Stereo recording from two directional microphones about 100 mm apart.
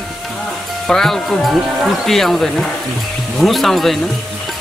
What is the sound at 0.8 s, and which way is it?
Speech, 5° left (ahead or behind).